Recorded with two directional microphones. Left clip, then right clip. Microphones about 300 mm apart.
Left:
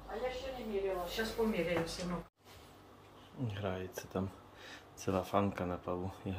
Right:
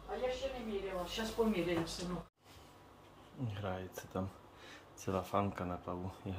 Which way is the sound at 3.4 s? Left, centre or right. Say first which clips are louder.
Left 2 dB; centre.